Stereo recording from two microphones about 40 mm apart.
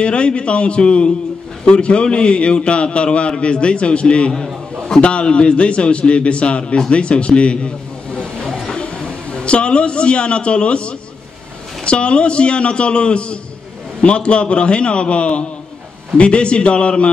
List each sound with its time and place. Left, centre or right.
0.0 s a man's voice: left